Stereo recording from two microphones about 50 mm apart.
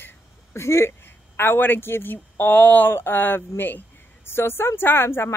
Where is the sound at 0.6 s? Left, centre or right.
Left.